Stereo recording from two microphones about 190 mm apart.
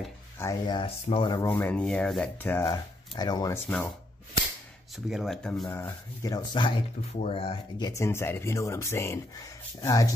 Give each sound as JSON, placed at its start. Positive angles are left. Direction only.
{"t": 0.4, "sound": "rub", "side_deg": 20}
{"t": 3.5, "sound": "rub", "side_deg": 10}
{"t": 4.9, "sound": "rub", "side_deg": 0}
{"t": 7.2, "sound": "speech", "side_deg": 30}
{"t": 7.9, "sound": "rub", "side_deg": 15}